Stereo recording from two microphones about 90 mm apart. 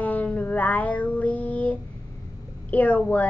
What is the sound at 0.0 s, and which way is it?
Child singing, 20° left (ahead or behind).